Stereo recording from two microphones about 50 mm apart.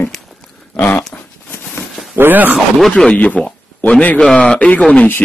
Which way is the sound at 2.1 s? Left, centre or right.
Right.